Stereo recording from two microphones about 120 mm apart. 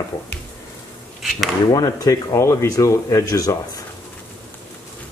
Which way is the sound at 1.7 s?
30° left (ahead or behind).